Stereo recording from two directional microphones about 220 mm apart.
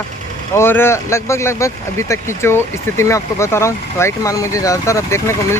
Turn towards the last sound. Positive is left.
turn(degrees=10)  # may be behind; listen again after turning